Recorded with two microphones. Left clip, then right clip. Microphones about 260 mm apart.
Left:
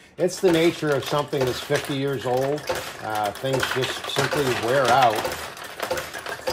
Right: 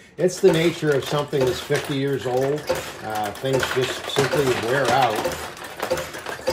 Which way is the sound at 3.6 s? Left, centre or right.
Centre.